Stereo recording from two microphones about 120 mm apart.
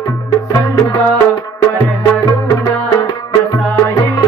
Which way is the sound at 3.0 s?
30° left (ahead or behind).